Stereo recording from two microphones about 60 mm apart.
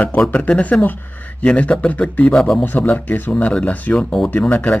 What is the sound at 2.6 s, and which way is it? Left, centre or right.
Speech, left.